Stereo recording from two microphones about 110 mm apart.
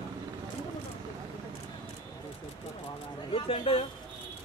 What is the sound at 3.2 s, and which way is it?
Speech, 50° left (ahead or behind).